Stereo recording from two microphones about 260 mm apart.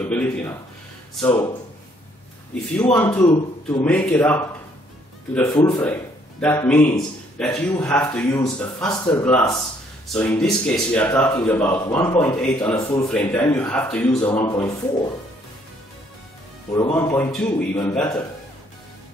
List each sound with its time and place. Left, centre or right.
0.1 s a man's voice: centre
2.7 s a man's voice: centre
16.9 s a man's voice: centre